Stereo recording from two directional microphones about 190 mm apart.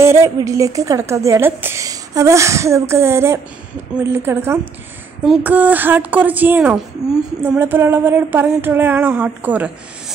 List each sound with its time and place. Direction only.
0.0 s a woman's voice: 15° right (ahead or behind)